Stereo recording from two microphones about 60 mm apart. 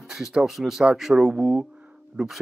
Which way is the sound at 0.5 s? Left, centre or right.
Centre.